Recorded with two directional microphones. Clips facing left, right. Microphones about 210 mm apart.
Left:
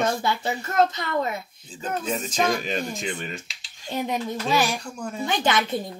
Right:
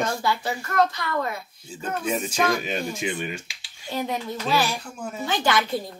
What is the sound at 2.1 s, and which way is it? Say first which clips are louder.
Speech: even; 10° right (ahead or behind).